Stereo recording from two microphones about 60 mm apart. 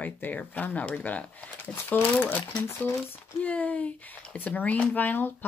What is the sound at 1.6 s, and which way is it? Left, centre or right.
Speech, left.